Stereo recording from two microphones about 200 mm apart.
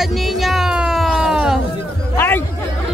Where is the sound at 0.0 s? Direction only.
Centre (ahead or behind).